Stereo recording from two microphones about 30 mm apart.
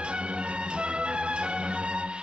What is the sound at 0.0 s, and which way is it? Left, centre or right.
Music, right.